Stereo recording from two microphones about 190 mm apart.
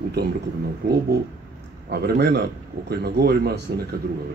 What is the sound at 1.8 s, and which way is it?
A man's voice, 60° right (ahead or behind).